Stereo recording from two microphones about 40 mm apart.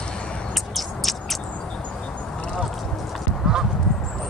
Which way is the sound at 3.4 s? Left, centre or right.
Centre.